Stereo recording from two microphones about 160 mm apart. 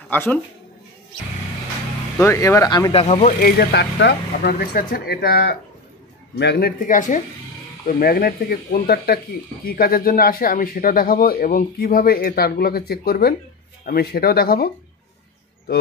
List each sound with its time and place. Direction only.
0.1 s speech: 10° left (ahead or behind)
2.1 s speech: 15° left (ahead or behind)
2.9 s speech: 40° left (ahead or behind)
3.4 s speech: 85° left; by 7.2 s 55° left (ahead or behind)
7.8 s speech: 65° left (ahead or behind)